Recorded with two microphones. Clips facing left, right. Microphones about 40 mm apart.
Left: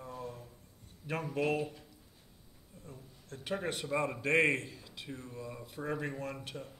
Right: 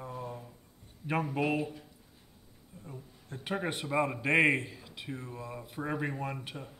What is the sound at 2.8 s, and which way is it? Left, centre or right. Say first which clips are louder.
A man's voice: right 4 dB; centre.